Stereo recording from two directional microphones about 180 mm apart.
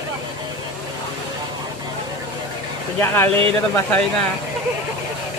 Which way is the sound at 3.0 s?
15° left (ahead or behind).